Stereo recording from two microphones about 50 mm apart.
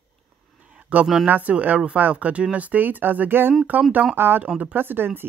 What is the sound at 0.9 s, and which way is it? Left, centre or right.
Speech, right.